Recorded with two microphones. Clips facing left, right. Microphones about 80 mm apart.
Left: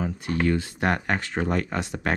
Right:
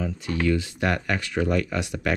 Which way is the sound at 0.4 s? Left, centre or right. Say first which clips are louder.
Even; left.